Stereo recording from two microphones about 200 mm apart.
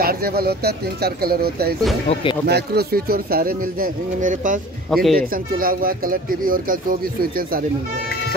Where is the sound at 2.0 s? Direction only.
25° left (ahead or behind).